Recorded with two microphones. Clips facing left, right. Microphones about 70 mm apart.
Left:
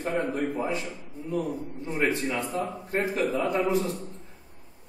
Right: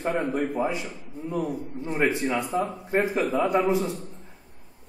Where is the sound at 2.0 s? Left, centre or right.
Centre.